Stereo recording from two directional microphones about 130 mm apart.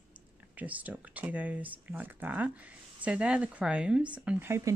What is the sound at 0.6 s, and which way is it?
Speech, 10° right (ahead or behind).